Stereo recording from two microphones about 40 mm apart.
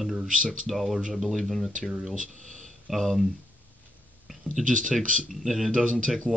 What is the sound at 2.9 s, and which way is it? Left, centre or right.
Speech, centre.